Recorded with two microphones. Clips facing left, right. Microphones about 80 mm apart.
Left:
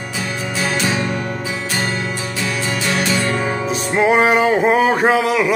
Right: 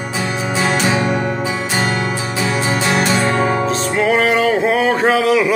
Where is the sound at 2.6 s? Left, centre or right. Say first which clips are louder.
Right 2 dB; right.